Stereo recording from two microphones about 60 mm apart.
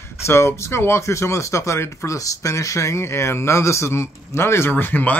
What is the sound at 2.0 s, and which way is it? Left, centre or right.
Speech, left.